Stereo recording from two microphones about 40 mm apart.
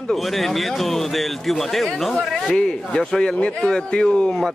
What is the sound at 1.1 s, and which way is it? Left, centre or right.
A man's voice, centre.